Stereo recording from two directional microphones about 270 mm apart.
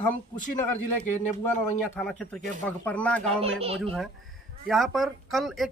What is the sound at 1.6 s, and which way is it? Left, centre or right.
Speech, centre.